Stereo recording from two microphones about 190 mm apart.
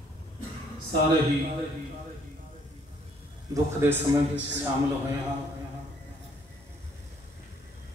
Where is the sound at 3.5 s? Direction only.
15° right (ahead or behind).